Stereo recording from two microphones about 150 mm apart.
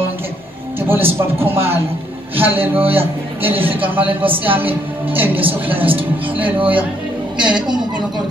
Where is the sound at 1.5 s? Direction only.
15° right (ahead or behind).